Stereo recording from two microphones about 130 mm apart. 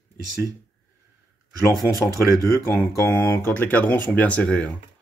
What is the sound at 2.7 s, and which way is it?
Speech, 15° left (ahead or behind).